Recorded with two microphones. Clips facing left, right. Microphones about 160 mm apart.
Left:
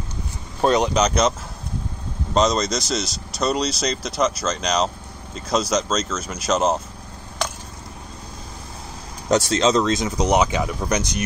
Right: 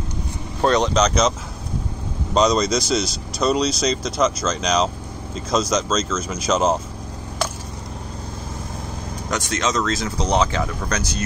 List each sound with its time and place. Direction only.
0.6 s speech: 10° left (ahead or behind)
2.3 s speech: centre (ahead or behind)
9.3 s speech: 30° left (ahead or behind)